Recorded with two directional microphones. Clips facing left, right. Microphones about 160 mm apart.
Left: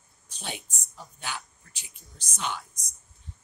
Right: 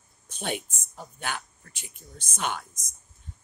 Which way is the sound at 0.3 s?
55° right (ahead or behind).